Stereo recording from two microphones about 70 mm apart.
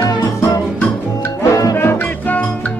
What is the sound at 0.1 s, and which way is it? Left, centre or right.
Music, left.